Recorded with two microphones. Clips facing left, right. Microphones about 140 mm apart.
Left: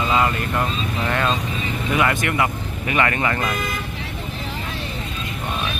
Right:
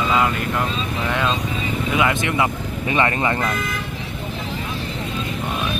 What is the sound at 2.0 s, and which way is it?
Speech, 15° right (ahead or behind).